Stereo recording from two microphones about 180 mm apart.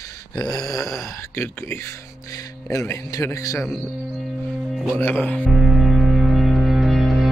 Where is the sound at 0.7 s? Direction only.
20° left (ahead or behind).